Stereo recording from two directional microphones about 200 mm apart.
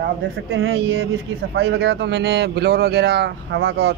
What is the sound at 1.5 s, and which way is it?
Speech, 55° right (ahead or behind).